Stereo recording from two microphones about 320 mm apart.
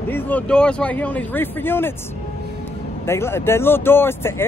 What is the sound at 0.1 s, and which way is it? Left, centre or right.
Speech, centre.